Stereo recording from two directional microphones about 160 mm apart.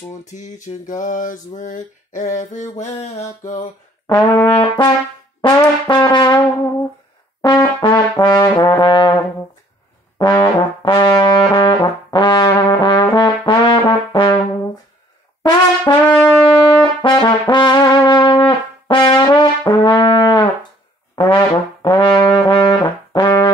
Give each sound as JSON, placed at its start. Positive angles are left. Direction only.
{"t": 0.2, "sound": "a sound", "side_deg": 50}
{"t": 4.1, "sound": "brass instrument", "side_deg": 20}
{"t": 6.5, "sound": "brass instrument", "side_deg": 20}
{"t": 15.4, "sound": "brass instrument", "side_deg": 30}
{"t": 16.3, "sound": "music", "side_deg": 10}
{"t": 17.1, "sound": "brass instrument", "side_deg": 30}